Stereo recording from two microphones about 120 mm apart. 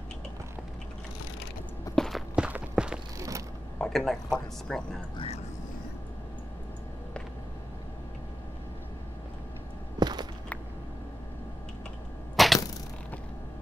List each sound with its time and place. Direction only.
2.0 s walk: centre (ahead or behind)
3.2 s vehicle: 25° right (ahead or behind)
3.7 s a man's voice: 5° left (ahead or behind)
9.9 s a sound: 35° right (ahead or behind)
12.4 s arrow: centre (ahead or behind)